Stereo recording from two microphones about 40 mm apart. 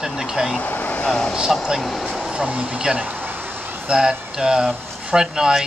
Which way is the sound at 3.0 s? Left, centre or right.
Right.